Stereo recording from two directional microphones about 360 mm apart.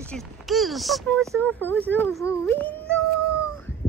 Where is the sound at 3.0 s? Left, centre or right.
Right.